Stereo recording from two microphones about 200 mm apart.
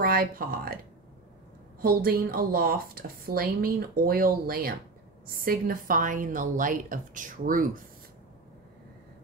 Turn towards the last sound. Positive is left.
turn(degrees=-45)  # may be behind; listen again after turning